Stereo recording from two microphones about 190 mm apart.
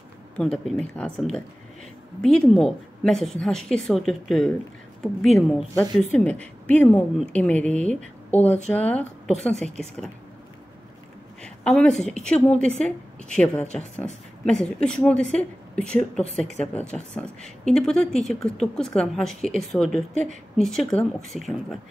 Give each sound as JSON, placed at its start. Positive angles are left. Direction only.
{"t": 0.4, "sound": "a woman's voice", "side_deg": 5}
{"t": 2.2, "sound": "a woman's voice", "side_deg": 5}
{"t": 8.4, "sound": "a woman's voice", "side_deg": 35}
{"t": 8.6, "sound": "a woman's voice", "side_deg": 5}
{"t": 11.4, "sound": "a woman's voice", "side_deg": 5}
{"t": 19.4, "sound": "a woman's voice", "side_deg": 35}
{"t": 19.8, "sound": "a woman's voice", "side_deg": 0}